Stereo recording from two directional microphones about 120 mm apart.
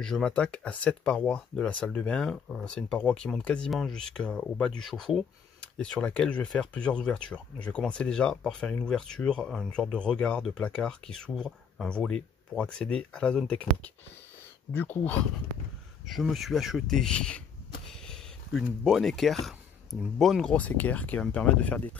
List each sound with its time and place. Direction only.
0.0 s speech: 5° left (ahead or behind)
16.1 s speech: centre (ahead or behind)